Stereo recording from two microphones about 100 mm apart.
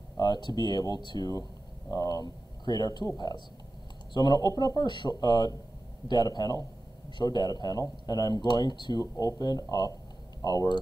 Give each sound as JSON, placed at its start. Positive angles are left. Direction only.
{"t": 0.2, "sound": "speech", "side_deg": 45}
{"t": 9.0, "sound": "speech", "side_deg": 30}